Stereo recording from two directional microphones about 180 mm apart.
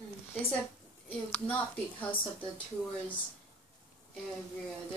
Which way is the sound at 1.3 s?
10° left (ahead or behind).